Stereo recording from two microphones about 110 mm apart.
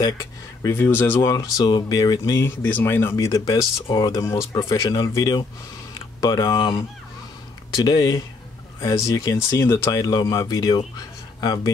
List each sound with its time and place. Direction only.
0.0 s speech: 30° left (ahead or behind)
1.3 s speech: 40° left (ahead or behind)
2.4 s speech: 20° left (ahead or behind)
3.8 s speech: 50° left (ahead or behind)
4.2 s speech: 30° left (ahead or behind)
9.9 s speech: 35° left (ahead or behind)
11.0 s a sound: 35° left (ahead or behind)